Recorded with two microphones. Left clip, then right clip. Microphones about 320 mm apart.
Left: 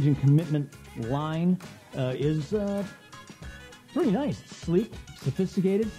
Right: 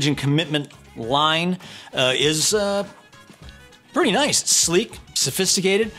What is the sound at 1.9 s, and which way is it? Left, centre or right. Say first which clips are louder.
Speech: right 11 dB; centre.